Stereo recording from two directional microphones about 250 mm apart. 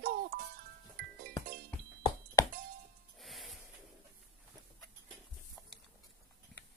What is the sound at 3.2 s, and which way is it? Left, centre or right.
Music, centre.